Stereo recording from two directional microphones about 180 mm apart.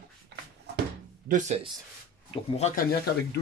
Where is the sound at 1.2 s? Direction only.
45° right (ahead or behind).